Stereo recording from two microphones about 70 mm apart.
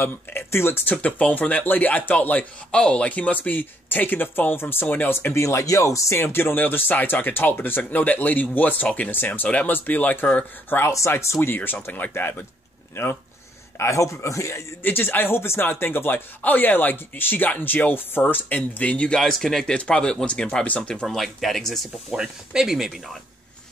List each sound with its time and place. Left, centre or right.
0.0 s speech: left
0.8 s speech: left
5.3 s speech: left
6.2 s speech: left
11.1 s speech: left
11.5 s speech: left
14.8 s speech: left
21.1 s speech: centre
22.1 s speech: centre